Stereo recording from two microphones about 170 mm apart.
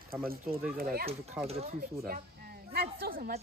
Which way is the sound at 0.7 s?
60° right (ahead or behind).